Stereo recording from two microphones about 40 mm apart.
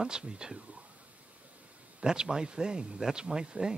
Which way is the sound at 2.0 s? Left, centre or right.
Centre.